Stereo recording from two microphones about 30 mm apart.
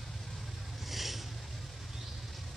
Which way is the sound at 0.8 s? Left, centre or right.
Centre.